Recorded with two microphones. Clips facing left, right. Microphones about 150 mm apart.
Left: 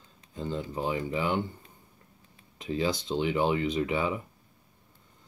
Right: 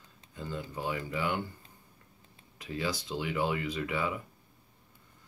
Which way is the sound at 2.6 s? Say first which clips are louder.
Left 6 dB; 25° left (ahead or behind).